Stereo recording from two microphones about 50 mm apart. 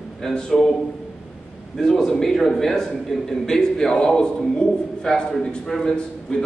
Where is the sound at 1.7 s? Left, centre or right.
Centre.